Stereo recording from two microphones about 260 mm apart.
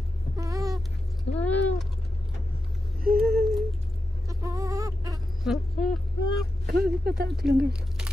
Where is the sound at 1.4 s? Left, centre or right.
Centre.